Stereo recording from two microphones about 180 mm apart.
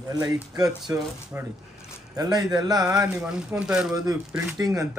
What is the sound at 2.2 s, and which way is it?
Speech, 20° right (ahead or behind).